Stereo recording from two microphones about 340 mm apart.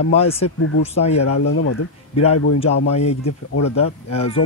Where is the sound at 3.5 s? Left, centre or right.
Left.